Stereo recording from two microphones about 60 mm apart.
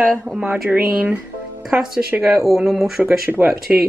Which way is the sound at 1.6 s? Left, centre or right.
Centre.